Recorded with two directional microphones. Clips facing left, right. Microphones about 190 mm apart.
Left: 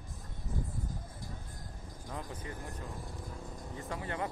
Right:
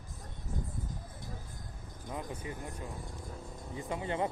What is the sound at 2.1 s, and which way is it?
Speech, 15° right (ahead or behind).